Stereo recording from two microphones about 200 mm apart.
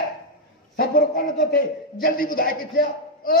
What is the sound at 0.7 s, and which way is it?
A man's voice, 45° left (ahead or behind).